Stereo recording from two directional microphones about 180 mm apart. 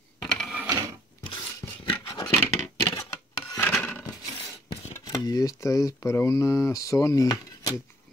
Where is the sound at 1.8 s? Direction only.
20° left (ahead or behind).